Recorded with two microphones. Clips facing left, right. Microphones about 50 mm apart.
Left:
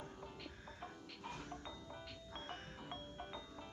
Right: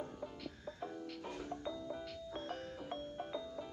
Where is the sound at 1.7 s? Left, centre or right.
Centre.